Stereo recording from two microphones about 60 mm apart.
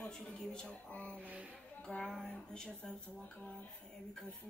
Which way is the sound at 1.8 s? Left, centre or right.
Centre.